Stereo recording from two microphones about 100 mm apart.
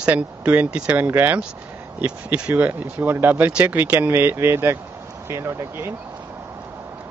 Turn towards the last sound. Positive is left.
turn(degrees=-25)  # may be behind; listen again after turning